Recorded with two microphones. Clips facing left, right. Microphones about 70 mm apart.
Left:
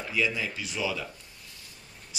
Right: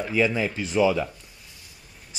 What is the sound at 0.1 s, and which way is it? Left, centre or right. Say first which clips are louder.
Speech: right 5 dB; right.